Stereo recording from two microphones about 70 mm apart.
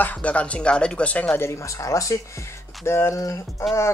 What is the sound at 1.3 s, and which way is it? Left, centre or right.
Speech, left.